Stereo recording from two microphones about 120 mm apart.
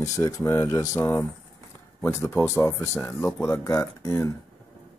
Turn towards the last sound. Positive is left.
turn(degrees=25)  # may be behind; listen again after turning